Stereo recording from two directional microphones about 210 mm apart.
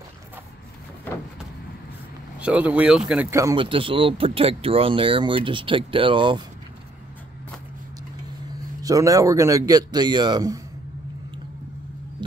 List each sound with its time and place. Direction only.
2.4 s speech: 5° right (ahead or behind); by 6.4 s 25° right (ahead or behind)
8.8 s a man's voice: 15° right (ahead or behind)